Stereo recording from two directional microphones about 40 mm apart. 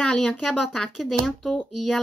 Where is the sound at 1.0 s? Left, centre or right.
Centre.